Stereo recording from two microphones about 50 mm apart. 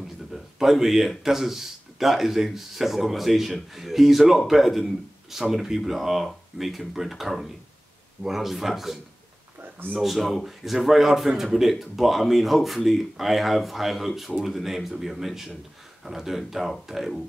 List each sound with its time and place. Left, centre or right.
0.3 s speech: centre
9.6 s a sound: right
9.9 s speech: centre